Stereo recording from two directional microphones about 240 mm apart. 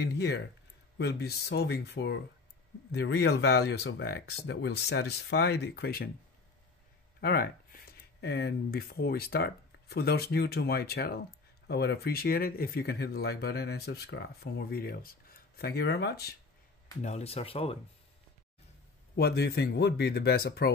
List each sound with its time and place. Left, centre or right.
0.0 s speech: left
7.2 s speech: left
17.0 s speech: left
19.1 s speech: left